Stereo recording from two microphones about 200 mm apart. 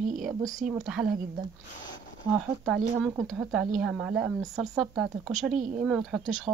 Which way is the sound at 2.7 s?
Centre (ahead or behind).